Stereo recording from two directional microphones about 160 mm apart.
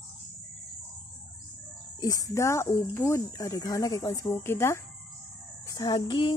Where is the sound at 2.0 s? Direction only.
20° left (ahead or behind).